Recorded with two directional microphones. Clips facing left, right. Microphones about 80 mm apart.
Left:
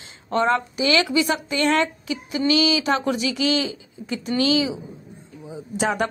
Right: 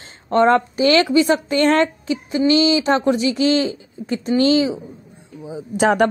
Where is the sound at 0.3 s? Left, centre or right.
Right.